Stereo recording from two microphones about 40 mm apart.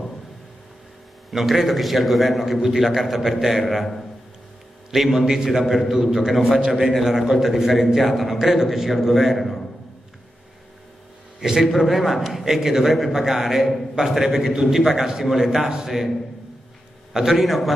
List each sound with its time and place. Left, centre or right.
1.3 s a man's voice: centre
4.9 s a man's voice: centre
7.2 s a man's voice: centre
11.3 s a man's voice: centre
11.6 s a man's voice: centre
14.5 s a man's voice: centre
17.1 s a man's voice: centre